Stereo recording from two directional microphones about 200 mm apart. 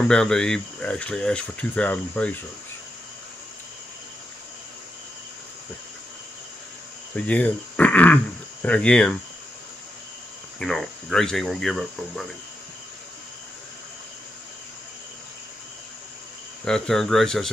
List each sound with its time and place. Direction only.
0.0 s speech: 5° left (ahead or behind)
7.2 s speech: 5° left (ahead or behind)
10.6 s speech: centre (ahead or behind)
16.6 s speech: centre (ahead or behind)